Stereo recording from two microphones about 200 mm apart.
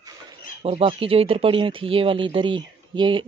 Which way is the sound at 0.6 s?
30° right (ahead or behind).